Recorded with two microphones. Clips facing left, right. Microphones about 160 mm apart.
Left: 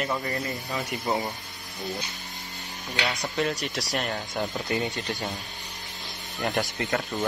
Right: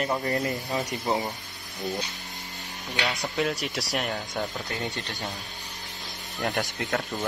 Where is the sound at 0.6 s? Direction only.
20° right (ahead or behind).